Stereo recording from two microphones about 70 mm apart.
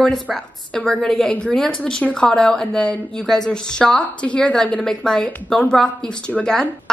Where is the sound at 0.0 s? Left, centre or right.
Centre.